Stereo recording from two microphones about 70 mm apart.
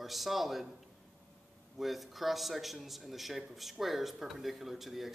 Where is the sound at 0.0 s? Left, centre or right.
Centre.